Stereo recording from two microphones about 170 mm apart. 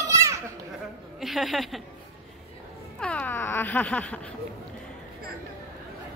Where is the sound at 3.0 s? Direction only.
5° left (ahead or behind).